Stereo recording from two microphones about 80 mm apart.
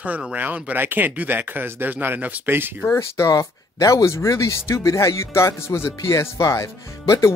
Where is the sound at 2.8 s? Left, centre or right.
Left.